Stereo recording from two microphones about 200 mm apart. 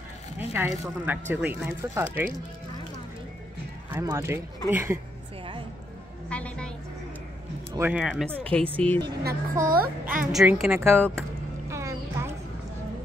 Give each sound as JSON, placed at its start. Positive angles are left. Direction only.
{"t": 0.6, "sound": "a woman's voice", "side_deg": -10}
{"t": 3.9, "sound": "a woman's voice", "side_deg": -15}
{"t": 6.2, "sound": "music", "side_deg": 5}
{"t": 7.7, "sound": "a woman's voice", "side_deg": -10}
{"t": 9.0, "sound": "speech", "side_deg": -50}
{"t": 10.3, "sound": "a woman's voice", "side_deg": -5}
{"t": 11.7, "sound": "a sound", "side_deg": -15}